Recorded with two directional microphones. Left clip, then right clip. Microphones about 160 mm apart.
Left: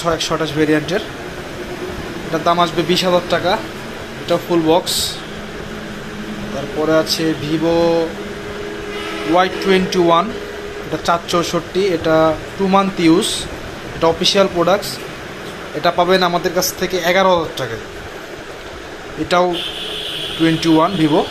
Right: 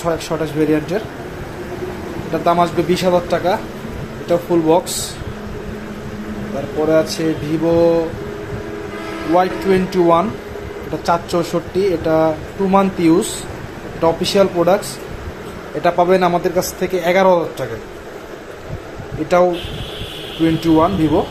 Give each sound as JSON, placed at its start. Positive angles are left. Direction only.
{"t": 0.0, "sound": "speech", "side_deg": -10}
{"t": 2.3, "sound": "speech", "side_deg": -15}
{"t": 6.9, "sound": "speech", "side_deg": -20}
{"t": 9.4, "sound": "speech", "side_deg": -10}
{"t": 15.8, "sound": "speech", "side_deg": -15}
{"t": 19.2, "sound": "speech", "side_deg": -10}
{"t": 20.7, "sound": "speech", "side_deg": 0}